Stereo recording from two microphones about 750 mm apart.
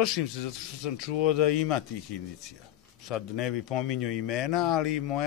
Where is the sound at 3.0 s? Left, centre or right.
Left.